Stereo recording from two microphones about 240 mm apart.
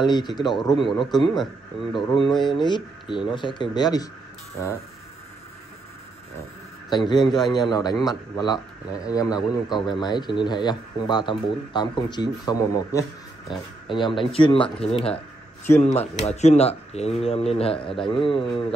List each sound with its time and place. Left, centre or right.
0.0 s a man's voice: centre
6.9 s a man's voice: centre